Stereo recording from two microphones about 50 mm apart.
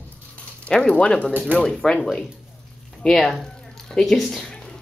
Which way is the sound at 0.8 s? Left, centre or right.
Centre.